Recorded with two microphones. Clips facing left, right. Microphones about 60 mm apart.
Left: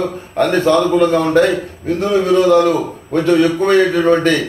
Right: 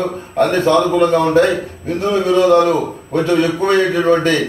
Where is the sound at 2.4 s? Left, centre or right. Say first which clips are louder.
Right 1 dB; right.